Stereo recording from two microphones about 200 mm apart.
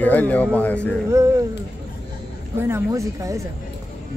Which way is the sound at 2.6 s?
10° right (ahead or behind).